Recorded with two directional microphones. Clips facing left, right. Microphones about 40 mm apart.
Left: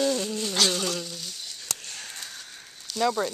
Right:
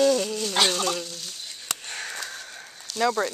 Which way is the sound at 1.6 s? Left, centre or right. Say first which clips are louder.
Right 6 dB; right.